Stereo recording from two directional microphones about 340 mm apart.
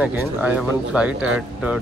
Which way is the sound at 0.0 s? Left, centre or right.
Centre.